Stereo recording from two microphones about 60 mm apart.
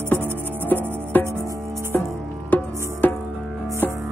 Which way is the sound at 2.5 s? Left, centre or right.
Left.